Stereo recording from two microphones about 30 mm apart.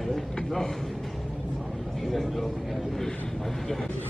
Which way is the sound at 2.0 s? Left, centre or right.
Centre.